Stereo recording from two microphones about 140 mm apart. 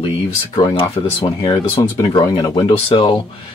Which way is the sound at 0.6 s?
35° left (ahead or behind).